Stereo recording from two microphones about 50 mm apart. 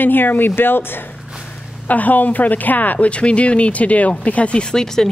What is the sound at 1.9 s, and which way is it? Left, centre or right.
Speech, left.